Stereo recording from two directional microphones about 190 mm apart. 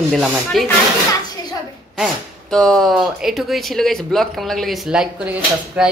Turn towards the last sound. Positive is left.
turn(degrees=-5)  # may be behind; listen again after turning